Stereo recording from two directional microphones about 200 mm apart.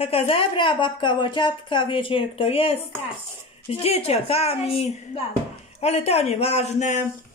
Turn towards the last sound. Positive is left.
turn(degrees=35)  # may be behind; listen again after turning